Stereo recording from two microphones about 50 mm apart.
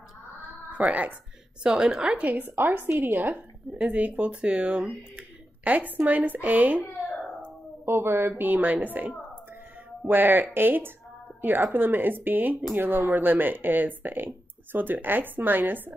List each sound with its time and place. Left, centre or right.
0.7 s speech: right
1.6 s a woman's voice: centre
2.2 s a woman's voice: right
3.7 s speech: right
5.6 s speech: right
7.8 s a woman's voice: right
8.4 s a woman's voice: right